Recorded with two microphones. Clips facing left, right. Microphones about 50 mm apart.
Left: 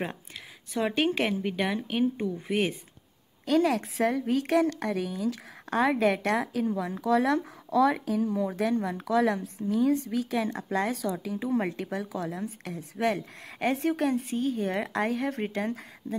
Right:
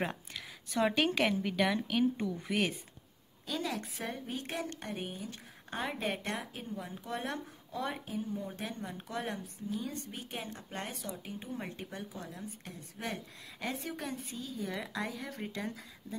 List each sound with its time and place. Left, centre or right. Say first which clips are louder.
0.7 s speech: left 3 dB; centre
3.4 s speech: left 13 dB; left